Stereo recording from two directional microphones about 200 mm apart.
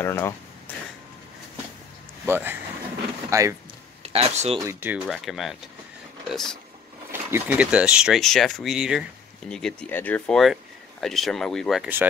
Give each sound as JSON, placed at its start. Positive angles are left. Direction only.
{"t": 0.0, "sound": "speech", "side_deg": 10}
{"t": 2.2, "sound": "speech", "side_deg": -10}
{"t": 4.0, "sound": "speech", "side_deg": -30}
{"t": 4.6, "sound": "speech", "side_deg": -10}
{"t": 7.1, "sound": "speech", "side_deg": -10}